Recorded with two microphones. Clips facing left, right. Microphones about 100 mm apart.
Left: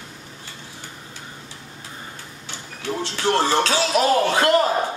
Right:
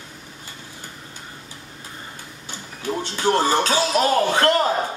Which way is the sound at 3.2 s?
5° right (ahead or behind).